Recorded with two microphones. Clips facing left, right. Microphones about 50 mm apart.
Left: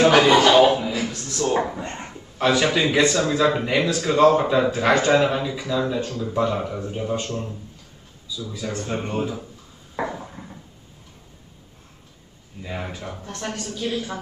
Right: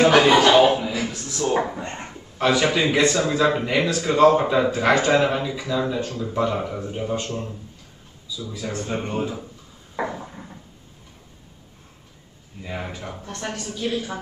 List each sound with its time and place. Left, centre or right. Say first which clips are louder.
0.0 s chuckle: even; centre
3.0 s a woman's voice: left 1 dB; centre
9.9 s a sound: even; centre
12.6 s a woman's voice: even; centre